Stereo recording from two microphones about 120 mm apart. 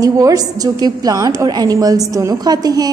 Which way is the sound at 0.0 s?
30° right (ahead or behind).